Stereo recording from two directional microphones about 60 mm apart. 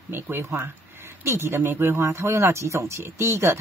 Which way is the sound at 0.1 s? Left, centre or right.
Right.